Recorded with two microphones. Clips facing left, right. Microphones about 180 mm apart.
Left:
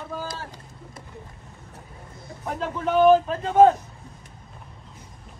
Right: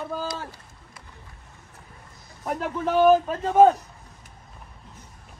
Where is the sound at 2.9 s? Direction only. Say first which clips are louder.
Left 1 dB; 5° right (ahead or behind).